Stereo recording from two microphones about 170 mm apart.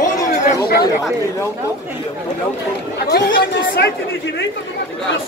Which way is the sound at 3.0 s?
75° left (ahead or behind).